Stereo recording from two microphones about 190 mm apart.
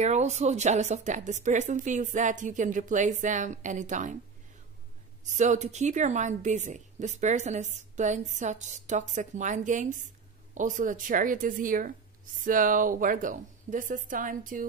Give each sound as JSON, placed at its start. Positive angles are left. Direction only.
{"t": 0.0, "sound": "a woman's voice", "side_deg": -35}
{"t": 5.2, "sound": "a woman's voice", "side_deg": -40}